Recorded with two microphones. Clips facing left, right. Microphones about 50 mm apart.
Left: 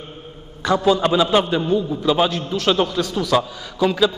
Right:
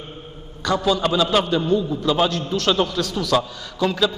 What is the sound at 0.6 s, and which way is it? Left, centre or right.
A man's voice, centre.